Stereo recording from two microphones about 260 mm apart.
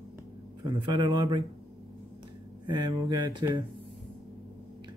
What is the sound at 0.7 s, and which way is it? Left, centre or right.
Speech, centre.